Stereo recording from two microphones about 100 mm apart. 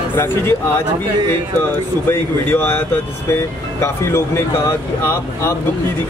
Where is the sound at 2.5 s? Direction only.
20° left (ahead or behind).